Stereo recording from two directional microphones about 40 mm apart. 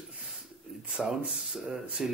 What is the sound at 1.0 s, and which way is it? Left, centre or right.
Speech, centre.